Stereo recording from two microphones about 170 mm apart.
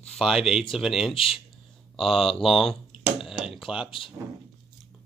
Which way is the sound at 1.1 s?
30° left (ahead or behind).